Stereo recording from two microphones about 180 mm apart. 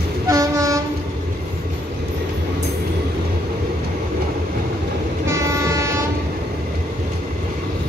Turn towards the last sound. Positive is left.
turn(degrees=-15)  # may be behind; listen again after turning